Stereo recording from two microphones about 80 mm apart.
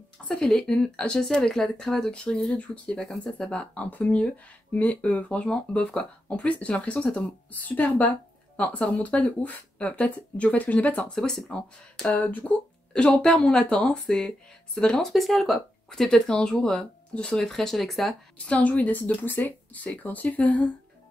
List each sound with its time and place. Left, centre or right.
0.3 s speech: centre
11.1 s speech: centre
12.2 s speech: left
13.1 s speech: centre
18.4 s speech: centre